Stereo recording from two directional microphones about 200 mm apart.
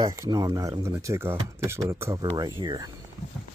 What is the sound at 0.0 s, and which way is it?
Speech, 20° right (ahead or behind).